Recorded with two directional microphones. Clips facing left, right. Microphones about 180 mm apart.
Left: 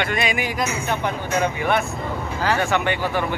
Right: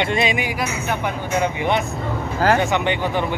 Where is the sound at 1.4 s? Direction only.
20° right (ahead or behind).